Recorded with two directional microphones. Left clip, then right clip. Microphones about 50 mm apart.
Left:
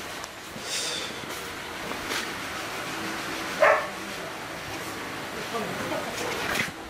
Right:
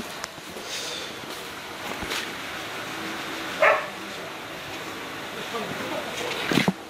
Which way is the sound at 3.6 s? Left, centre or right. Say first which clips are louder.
Right 1 dB; right.